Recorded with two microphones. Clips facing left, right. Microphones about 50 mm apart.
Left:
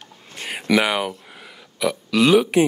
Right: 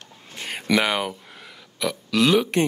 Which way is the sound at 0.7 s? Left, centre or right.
Centre.